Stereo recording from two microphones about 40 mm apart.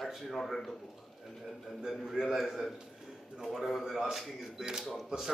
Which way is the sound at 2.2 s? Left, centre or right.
Centre.